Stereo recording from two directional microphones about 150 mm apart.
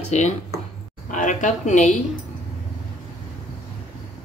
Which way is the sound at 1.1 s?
60° left (ahead or behind).